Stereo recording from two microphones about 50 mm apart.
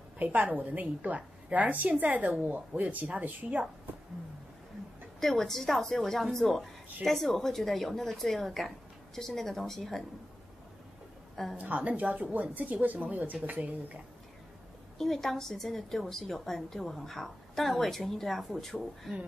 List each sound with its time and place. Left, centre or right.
0.2 s speech: right
5.2 s a woman's voice: centre
11.5 s speech: right
15.0 s a woman's voice: centre